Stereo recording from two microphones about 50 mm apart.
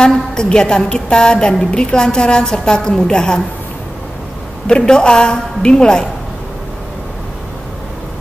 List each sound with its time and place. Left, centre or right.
0.0 s a woman's voice: centre
4.6 s a woman's voice: centre